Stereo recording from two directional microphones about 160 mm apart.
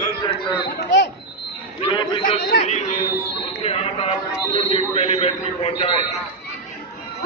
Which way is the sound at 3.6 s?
40° left (ahead or behind).